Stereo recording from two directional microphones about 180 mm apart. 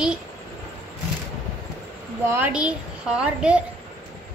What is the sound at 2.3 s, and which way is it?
A woman's voice, 10° right (ahead or behind).